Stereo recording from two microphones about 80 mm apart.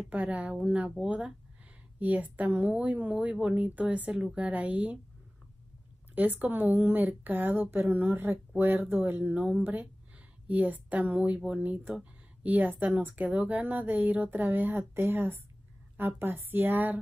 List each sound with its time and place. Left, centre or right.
0.1 s speech: centre
6.1 s speech: right